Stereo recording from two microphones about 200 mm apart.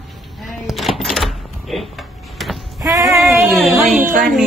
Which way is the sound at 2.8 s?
15° right (ahead or behind).